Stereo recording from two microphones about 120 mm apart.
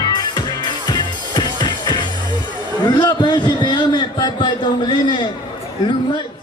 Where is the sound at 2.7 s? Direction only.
40° left (ahead or behind).